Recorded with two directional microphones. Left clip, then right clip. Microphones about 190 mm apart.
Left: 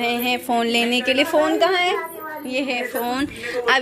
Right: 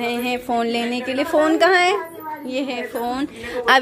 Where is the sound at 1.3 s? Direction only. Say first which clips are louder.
Right 6 dB; 30° right (ahead or behind).